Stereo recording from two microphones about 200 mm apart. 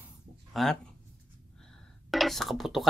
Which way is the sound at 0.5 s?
Centre (ahead or behind).